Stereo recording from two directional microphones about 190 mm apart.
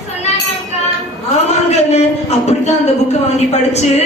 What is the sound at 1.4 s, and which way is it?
A woman's voice, 35° left (ahead or behind).